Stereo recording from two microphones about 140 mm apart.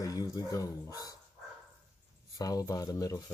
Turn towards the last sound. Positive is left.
turn(degrees=25)  # may be behind; listen again after turning